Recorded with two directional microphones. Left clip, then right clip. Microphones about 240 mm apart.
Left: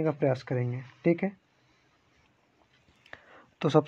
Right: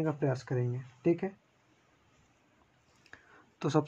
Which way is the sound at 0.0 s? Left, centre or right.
Left.